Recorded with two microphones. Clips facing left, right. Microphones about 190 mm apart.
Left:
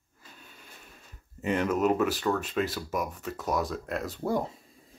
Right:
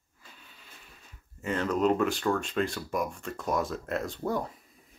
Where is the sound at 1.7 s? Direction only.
5° left (ahead or behind).